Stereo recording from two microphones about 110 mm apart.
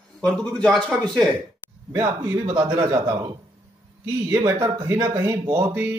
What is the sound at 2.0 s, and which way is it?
A man's voice, 30° right (ahead or behind).